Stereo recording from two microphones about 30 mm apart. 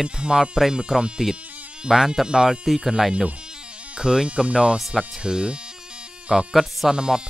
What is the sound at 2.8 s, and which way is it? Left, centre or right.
Speech, centre.